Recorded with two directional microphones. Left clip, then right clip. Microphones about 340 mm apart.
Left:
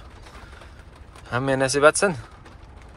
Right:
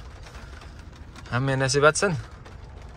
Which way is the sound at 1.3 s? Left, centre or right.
Centre.